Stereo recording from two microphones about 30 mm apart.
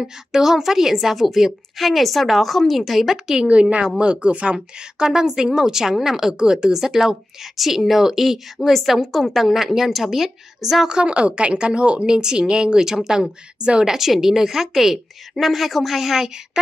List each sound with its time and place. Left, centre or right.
0.0 s a woman's voice: centre
3.3 s a woman's voice: right
4.0 s a woman's voice: right
4.6 s a woman's voice: centre
6.3 s a woman's voice: right
7.0 s a woman's voice: centre
10.9 s a woman's voice: right
12.1 s a woman's voice: right
13.6 s a woman's voice: right
13.8 s a woman's voice: centre